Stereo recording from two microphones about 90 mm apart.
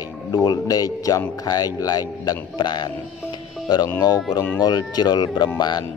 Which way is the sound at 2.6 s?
55° left (ahead or behind).